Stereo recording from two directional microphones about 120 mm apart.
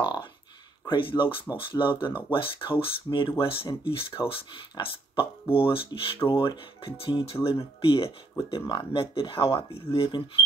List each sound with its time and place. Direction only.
0.8 s speech: 45° left (ahead or behind)